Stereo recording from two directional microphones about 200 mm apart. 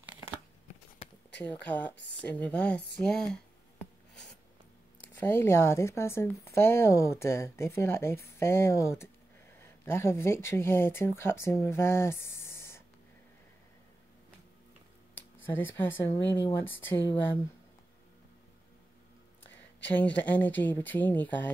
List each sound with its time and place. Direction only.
1.7 s speech: 10° left (ahead or behind)
2.0 s speech: 60° left (ahead or behind)
2.2 s speech: 5° left (ahead or behind)
3.7 s writing: 5° left (ahead or behind)
5.1 s speech: 10° left (ahead or behind)
15.4 s speech: 10° left (ahead or behind)
19.9 s speech: 10° left (ahead or behind)